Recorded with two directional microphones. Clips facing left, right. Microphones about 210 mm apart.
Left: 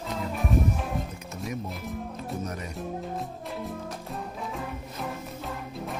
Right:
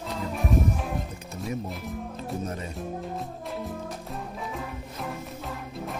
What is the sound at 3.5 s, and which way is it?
Music, centre (ahead or behind).